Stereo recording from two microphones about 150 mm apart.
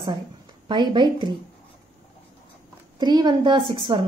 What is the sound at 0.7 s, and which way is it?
Speech, 30° right (ahead or behind).